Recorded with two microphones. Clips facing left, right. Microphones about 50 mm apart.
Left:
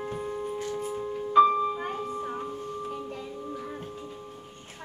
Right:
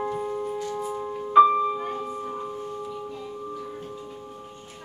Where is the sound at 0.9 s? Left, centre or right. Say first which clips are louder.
Right 4 dB; centre.